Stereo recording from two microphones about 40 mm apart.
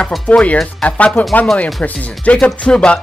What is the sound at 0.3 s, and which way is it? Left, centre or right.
Speech, left.